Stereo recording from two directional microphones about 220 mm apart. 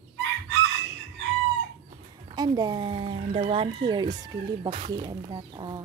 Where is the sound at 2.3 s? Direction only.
20° right (ahead or behind).